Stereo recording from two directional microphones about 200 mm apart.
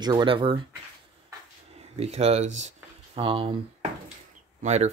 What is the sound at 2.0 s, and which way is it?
Speech, 30° right (ahead or behind).